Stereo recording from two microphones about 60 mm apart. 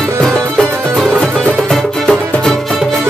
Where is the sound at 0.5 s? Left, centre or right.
Centre.